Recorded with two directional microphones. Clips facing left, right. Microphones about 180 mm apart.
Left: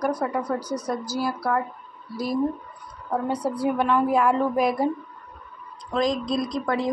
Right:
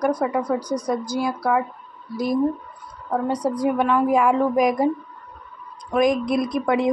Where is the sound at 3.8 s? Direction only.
5° right (ahead or behind).